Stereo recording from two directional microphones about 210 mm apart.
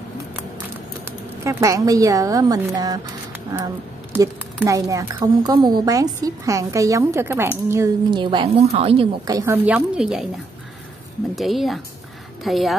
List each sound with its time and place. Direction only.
1.4 s a woman's voice: 15° right (ahead or behind)